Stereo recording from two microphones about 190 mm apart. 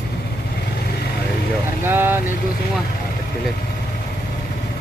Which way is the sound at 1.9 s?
10° right (ahead or behind).